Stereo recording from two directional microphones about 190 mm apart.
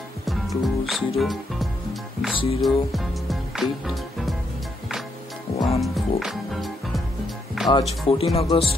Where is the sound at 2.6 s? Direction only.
Centre (ahead or behind).